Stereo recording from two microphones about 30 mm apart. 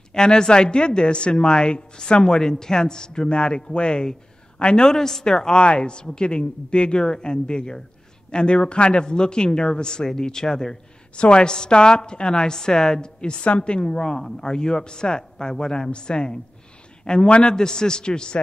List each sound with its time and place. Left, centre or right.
0.1 s a woman's voice: left
4.8 s a woman's voice: centre
5.4 s a woman's voice: left
11.1 s a woman's voice: left